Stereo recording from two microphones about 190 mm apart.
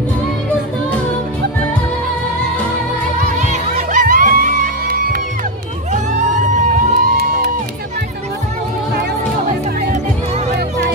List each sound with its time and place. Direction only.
3.2 s music: 40° right (ahead or behind)